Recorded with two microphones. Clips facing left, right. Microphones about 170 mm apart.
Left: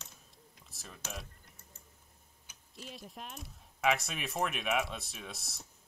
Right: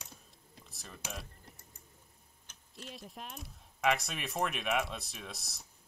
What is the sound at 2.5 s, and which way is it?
Speech, centre (ahead or behind).